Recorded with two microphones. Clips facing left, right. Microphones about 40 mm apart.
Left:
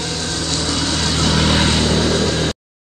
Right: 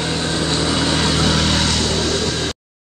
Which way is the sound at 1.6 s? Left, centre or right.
Centre.